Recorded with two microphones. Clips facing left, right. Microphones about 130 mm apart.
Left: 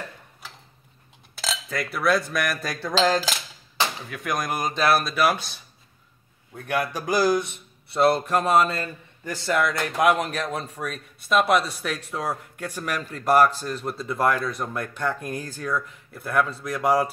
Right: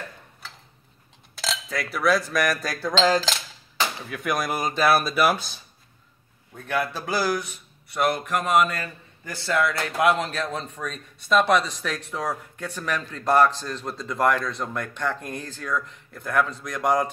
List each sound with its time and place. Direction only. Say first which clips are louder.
1.3 s cutlery: even; centre (ahead or behind)
4.1 s speech: right 1 dB; centre (ahead or behind)
6.5 s speech: left 1 dB; 15° left (ahead or behind); by 8.8 s 30° left (ahead or behind)
9.3 s speech: left 1 dB; 20° left (ahead or behind)